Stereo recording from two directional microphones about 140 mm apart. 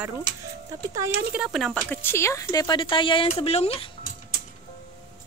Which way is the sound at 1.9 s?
15° left (ahead or behind).